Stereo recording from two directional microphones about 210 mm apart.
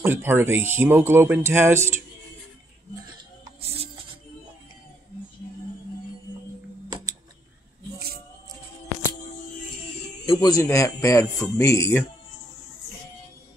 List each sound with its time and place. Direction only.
0.0 s speech: 10° right (ahead or behind)
3.1 s music: 20° right (ahead or behind)
10.2 s speech: 20° left (ahead or behind)